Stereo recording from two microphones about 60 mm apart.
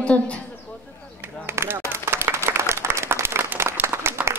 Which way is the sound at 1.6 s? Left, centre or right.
Right.